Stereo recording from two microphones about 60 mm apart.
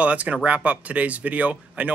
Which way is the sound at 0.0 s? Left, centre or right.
Right.